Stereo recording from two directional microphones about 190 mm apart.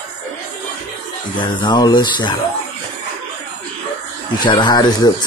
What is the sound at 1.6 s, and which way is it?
Speech, 25° left (ahead or behind).